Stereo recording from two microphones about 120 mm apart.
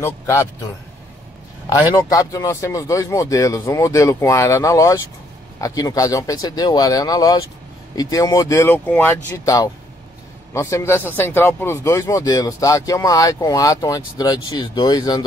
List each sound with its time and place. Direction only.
0.0 s speech: 25° left (ahead or behind)
2.0 s speech: 30° left (ahead or behind)
9.4 s speech: 30° left (ahead or behind)